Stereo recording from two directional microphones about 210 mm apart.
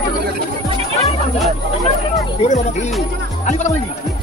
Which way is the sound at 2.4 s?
35° left (ahead or behind).